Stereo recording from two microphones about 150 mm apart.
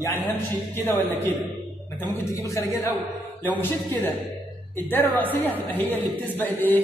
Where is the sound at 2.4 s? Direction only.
20° left (ahead or behind).